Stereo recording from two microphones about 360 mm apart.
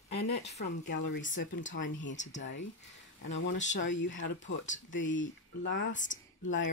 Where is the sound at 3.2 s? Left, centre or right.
Left.